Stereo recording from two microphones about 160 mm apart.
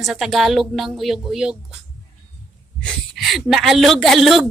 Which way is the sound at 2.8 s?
Centre (ahead or behind).